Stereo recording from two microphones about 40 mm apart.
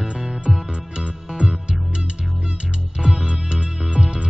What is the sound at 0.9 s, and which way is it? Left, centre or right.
Music, right.